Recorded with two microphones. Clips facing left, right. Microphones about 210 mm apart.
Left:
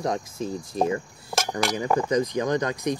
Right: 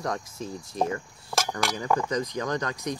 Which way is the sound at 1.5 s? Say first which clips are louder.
Left 4 dB; 20° left (ahead or behind).